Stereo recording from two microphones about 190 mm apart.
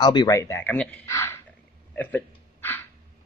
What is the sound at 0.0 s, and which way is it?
Speech, 20° left (ahead or behind).